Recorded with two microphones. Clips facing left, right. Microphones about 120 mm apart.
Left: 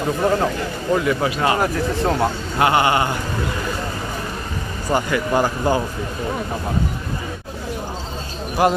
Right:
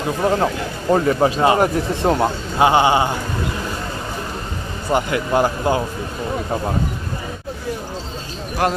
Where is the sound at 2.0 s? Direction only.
25° right (ahead or behind).